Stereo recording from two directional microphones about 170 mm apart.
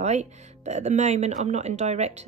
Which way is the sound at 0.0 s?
45° right (ahead or behind).